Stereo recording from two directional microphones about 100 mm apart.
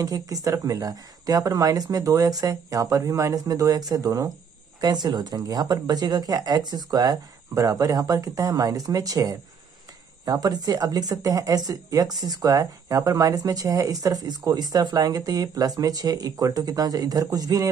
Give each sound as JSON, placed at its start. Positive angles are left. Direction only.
{"t": 0.0, "sound": "speech", "side_deg": -35}